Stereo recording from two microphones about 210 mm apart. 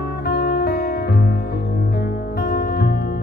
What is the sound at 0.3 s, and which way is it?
Music, 45° left (ahead or behind).